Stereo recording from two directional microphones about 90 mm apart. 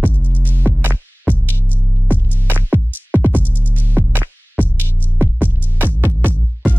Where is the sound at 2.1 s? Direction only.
20° right (ahead or behind).